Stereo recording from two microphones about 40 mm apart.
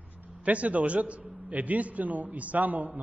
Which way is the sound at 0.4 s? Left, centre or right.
Right.